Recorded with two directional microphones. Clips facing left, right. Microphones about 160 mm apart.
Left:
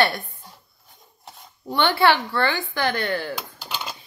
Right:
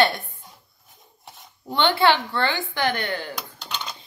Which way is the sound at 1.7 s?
20° right (ahead or behind).